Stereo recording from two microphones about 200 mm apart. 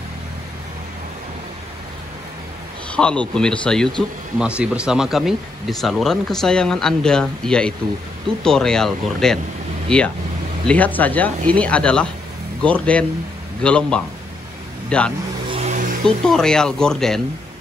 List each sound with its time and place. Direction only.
2.9 s speech: 5° left (ahead or behind)
15.4 s music: 30° right (ahead or behind)
16.3 s speech: 5° left (ahead or behind)